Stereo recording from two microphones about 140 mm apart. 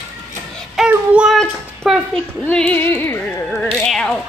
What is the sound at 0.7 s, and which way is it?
Child singing, 5° right (ahead or behind).